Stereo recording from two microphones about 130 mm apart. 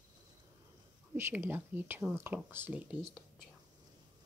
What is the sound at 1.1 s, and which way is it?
Speech, 15° right (ahead or behind).